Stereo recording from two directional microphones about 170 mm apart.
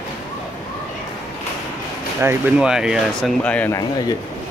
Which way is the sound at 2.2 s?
15° right (ahead or behind).